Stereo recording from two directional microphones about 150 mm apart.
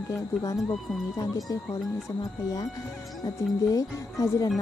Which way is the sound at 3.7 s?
25° left (ahead or behind).